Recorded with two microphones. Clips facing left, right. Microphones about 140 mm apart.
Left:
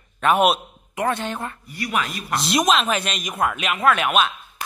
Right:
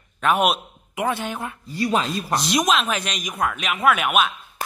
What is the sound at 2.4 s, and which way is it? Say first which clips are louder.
Speech: left 2 dB; centre (ahead or behind).